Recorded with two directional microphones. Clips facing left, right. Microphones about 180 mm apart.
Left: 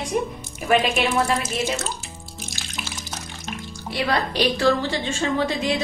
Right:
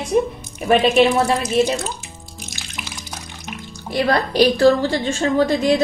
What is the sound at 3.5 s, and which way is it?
Music, 15° right (ahead or behind).